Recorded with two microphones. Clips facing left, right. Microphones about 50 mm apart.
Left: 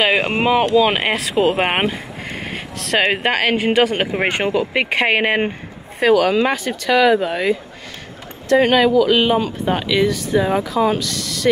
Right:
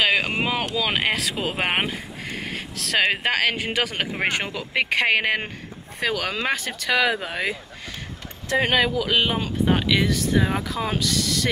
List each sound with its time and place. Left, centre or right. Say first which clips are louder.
0.0 s speech: left 5 dB; centre
1.4 s a sound: left 10 dB; centre
3.2 s speech: left 5 dB; centre
4.0 s speech: left 6 dB; centre
5.9 s speech: left 11 dB; centre